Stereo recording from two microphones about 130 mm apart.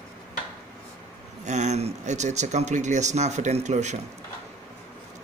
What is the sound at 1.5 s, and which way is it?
Speech, 60° right (ahead or behind).